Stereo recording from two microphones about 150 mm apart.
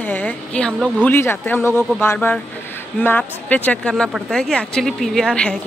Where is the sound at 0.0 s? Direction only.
10° left (ahead or behind).